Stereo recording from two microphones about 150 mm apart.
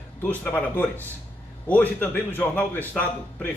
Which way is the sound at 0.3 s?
10° left (ahead or behind).